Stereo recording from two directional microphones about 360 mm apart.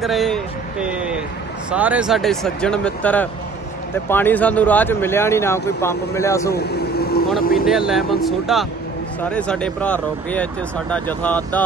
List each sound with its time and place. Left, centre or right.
0.0 s speech: centre
6.5 s vehicle: left
7.5 s speech: centre